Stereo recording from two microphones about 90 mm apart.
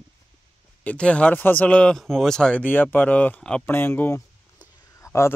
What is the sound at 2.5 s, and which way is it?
Speech, 20° left (ahead or behind).